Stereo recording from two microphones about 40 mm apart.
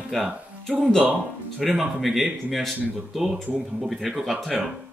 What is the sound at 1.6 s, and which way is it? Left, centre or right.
Speech, centre.